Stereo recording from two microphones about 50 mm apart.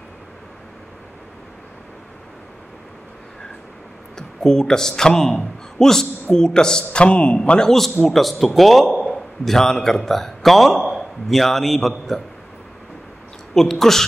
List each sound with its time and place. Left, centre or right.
4.4 s a man's voice: centre
13.6 s a man's voice: centre